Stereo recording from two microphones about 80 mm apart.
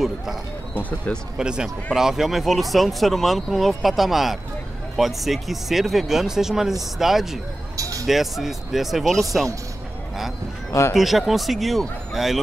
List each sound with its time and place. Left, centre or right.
0.7 s speech: centre
1.4 s speech: centre
7.7 s a sound: right
8.1 s speech: centre
10.7 s speech: left
11.0 s speech: centre